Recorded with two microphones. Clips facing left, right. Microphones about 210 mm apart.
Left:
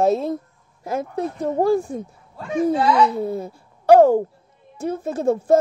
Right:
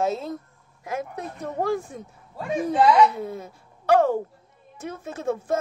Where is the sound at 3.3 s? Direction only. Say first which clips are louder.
Left 8 dB; 35° left (ahead or behind).